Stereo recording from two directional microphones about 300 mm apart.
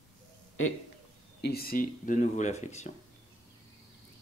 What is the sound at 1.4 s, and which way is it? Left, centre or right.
Speech, left.